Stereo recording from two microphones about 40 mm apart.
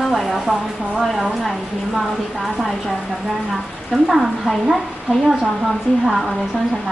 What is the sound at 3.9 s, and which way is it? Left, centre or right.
Speech, centre.